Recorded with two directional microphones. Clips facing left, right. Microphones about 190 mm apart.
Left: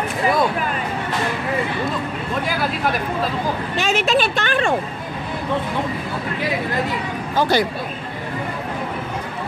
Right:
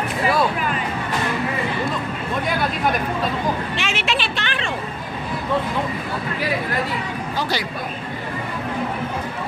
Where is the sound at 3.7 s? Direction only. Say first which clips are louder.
Left 6 dB; 40° left (ahead or behind).